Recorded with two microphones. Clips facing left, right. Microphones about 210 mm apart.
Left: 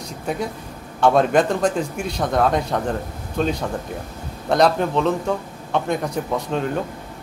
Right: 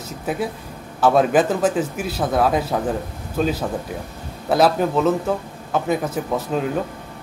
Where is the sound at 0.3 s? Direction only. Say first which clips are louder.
Right 1 dB; 5° right (ahead or behind).